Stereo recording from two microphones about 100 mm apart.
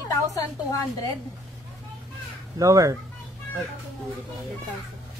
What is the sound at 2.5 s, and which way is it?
Speech, 35° right (ahead or behind).